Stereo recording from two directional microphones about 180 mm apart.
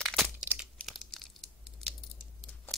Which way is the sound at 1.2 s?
Centre (ahead or behind).